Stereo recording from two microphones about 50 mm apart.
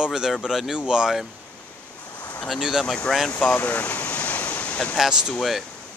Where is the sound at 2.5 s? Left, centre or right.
Centre.